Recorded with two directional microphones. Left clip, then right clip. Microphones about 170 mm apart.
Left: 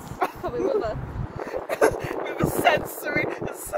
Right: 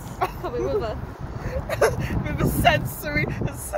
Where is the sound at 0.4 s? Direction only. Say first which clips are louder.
Left 1 dB; 10° right (ahead or behind).